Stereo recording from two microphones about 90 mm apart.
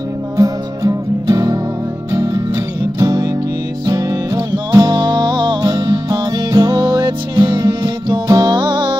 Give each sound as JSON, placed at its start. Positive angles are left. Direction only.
{"t": 0.4, "sound": "music", "side_deg": -40}
{"t": 3.0, "sound": "music", "side_deg": -45}